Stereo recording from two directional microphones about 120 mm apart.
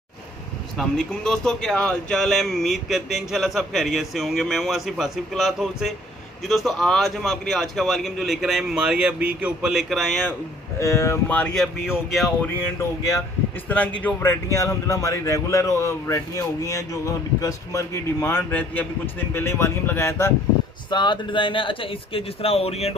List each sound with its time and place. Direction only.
0.7 s speech: 5° left (ahead or behind)
10.8 s speech: 25° left (ahead or behind)
11.2 s speech: 10° left (ahead or behind)
12.4 s speech: 20° left (ahead or behind)
20.9 s speech: 40° left (ahead or behind); by 22.9 s 60° left (ahead or behind)